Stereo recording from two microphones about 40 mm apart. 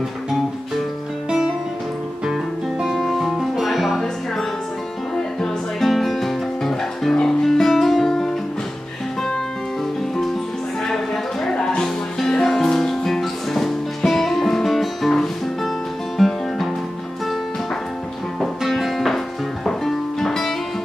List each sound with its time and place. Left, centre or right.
2.2 s music: centre
5.8 s music: centre
11.4 s music: left
11.8 s music: centre
18.6 s music: centre